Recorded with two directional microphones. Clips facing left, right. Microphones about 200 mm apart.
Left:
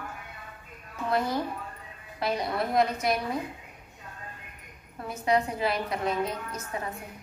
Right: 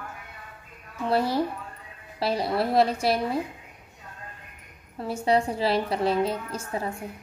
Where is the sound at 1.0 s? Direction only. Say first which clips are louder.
Right 4 dB; 30° right (ahead or behind).